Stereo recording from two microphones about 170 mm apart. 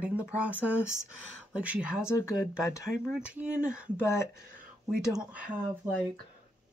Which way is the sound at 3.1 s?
10° right (ahead or behind).